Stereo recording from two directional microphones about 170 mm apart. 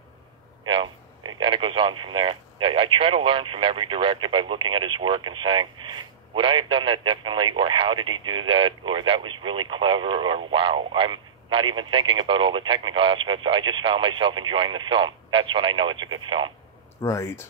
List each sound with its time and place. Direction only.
1.4 s speech: 30° right (ahead or behind)
17.0 s speech: 15° left (ahead or behind)